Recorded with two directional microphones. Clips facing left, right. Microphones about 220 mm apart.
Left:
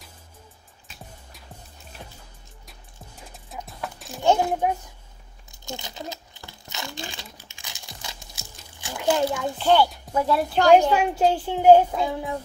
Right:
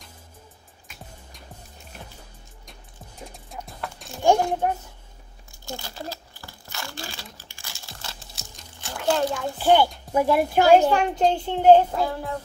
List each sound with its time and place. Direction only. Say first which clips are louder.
3.4 s music: left 2 dB; centre (ahead or behind)
4.4 s a child's voice: even; 5° left (ahead or behind)
5.5 s crumpling: even; 20° left (ahead or behind)
7.5 s tearing: even; 15° left (ahead or behind)
8.7 s a sound: left 1 dB; 10° left (ahead or behind)
9.6 s a woman's voice: right 1 dB; 10° right (ahead or behind)
10.9 s a child's voice: even; 5° left (ahead or behind)